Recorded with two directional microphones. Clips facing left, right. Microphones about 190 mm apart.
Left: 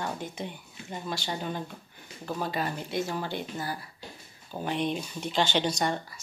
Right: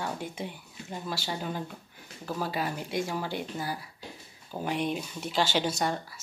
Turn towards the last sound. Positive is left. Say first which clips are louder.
# left 1 dB
turn(degrees=-5)  # may be behind; listen again after turning